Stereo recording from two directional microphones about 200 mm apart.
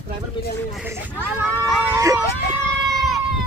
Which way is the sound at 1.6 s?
15° right (ahead or behind).